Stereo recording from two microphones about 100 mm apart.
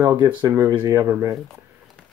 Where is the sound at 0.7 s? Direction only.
45° right (ahead or behind).